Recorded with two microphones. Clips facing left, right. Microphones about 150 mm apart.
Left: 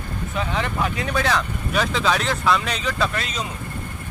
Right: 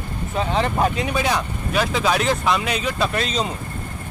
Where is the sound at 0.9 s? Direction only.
15° right (ahead or behind).